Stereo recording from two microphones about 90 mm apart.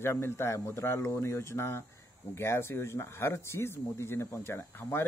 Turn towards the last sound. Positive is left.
turn(degrees=25)  # may be behind; listen again after turning